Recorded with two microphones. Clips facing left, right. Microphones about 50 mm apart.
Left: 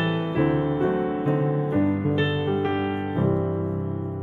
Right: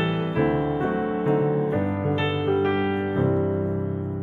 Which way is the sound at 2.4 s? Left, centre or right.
Centre.